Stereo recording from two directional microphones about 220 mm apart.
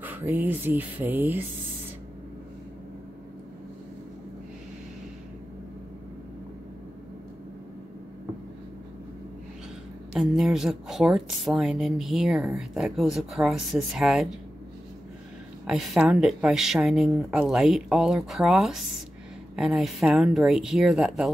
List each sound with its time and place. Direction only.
0.0 s speech: 10° right (ahead or behind)
10.1 s a woman's voice: centre (ahead or behind)
15.6 s a woman's voice: centre (ahead or behind)